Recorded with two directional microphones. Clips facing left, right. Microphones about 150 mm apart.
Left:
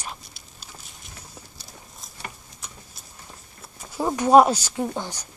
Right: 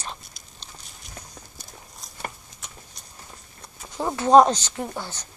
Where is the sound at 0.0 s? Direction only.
5° left (ahead or behind).